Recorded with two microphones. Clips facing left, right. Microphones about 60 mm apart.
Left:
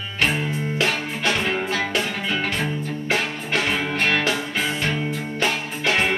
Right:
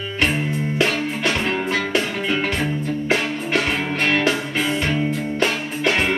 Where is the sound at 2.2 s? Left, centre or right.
Centre.